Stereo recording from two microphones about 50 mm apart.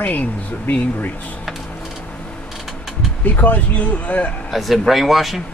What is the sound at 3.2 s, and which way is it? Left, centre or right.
Speech, left.